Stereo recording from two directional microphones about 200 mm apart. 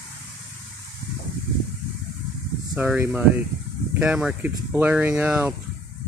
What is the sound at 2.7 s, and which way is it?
Speech, 5° right (ahead or behind).